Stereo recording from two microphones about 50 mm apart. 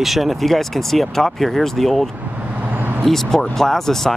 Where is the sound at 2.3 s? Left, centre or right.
Right.